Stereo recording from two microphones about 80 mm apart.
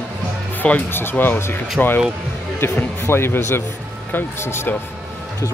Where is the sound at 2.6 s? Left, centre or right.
Left.